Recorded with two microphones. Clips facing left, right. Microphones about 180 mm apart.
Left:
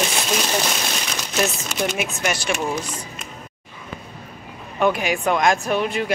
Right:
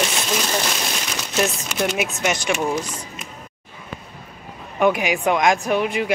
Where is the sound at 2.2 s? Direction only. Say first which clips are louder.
Right 1 dB; 20° right (ahead or behind).